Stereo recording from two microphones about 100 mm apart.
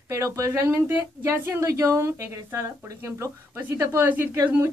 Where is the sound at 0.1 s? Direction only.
30° right (ahead or behind).